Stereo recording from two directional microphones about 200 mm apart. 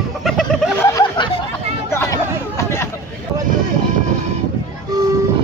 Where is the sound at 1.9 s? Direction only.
15° left (ahead or behind).